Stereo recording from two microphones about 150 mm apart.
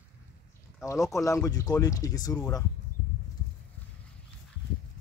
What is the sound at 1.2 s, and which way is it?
Speech, 20° left (ahead or behind).